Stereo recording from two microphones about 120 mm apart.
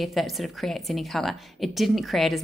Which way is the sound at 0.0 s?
Centre (ahead or behind).